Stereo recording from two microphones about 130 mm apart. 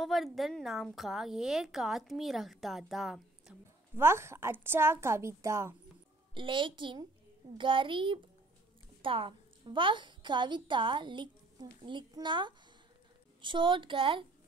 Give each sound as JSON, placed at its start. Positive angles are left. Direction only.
{"t": 0.0, "sound": "a woman's voice", "side_deg": 0}
{"t": 3.9, "sound": "a woman's voice", "side_deg": -20}
{"t": 6.3, "sound": "a woman's voice", "side_deg": -40}